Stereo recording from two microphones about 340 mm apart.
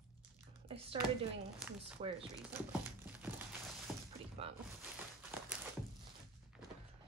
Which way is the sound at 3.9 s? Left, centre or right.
Centre.